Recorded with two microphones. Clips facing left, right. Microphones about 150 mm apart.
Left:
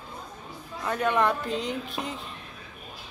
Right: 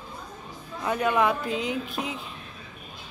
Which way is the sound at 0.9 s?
5° right (ahead or behind).